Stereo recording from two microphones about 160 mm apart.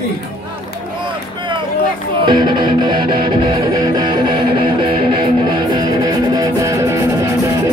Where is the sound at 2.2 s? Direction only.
30° right (ahead or behind).